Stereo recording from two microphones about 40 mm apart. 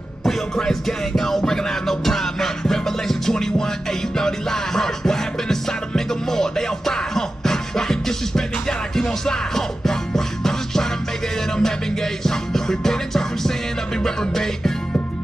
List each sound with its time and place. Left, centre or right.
0.6 s music: centre